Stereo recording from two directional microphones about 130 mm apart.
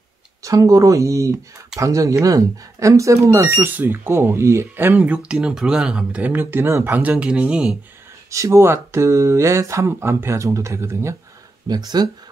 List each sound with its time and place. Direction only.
0.4 s speech: 25° right (ahead or behind); by 7.7 s 10° right (ahead or behind)
8.3 s speech: 25° right (ahead or behind)